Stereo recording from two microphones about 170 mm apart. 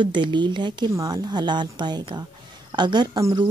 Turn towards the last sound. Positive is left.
turn(degrees=-20)  # may be behind; listen again after turning